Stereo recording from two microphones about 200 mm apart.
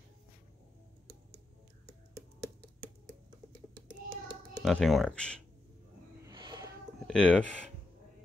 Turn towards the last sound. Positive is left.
turn(degrees=5)  # may be behind; listen again after turning